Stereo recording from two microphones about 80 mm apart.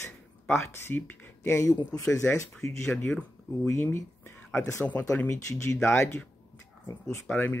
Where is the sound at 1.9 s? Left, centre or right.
Left.